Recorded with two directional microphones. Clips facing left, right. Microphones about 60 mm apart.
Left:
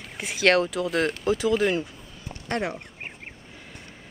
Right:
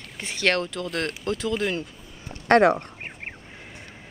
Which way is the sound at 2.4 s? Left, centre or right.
Right.